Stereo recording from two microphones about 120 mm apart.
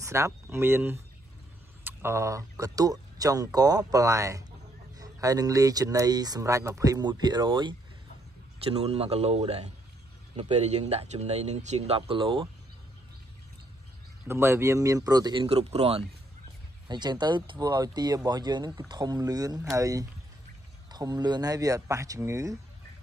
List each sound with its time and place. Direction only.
0.0 s speech: 25° right (ahead or behind)
8.6 s speech: 60° right (ahead or behind)
12.1 s speech: 45° right (ahead or behind)
14.2 s speech: 20° right (ahead or behind)
15.4 s speech: 60° right (ahead or behind)
16.8 s speech: 40° right (ahead or behind)